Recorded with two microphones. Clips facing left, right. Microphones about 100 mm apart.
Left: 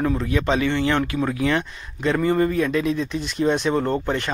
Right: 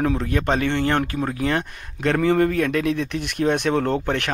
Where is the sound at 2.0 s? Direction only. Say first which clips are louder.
Right 1 dB; 70° right (ahead or behind).